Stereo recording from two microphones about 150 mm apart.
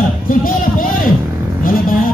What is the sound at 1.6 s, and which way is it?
Vehicle, 70° left (ahead or behind).